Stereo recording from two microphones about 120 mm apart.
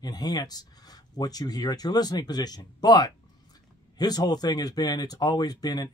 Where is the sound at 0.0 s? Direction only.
35° left (ahead or behind).